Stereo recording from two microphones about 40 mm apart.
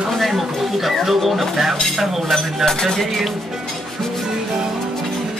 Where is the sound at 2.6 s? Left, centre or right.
Centre.